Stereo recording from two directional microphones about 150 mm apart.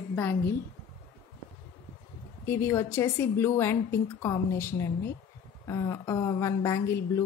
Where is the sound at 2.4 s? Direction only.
15° left (ahead or behind).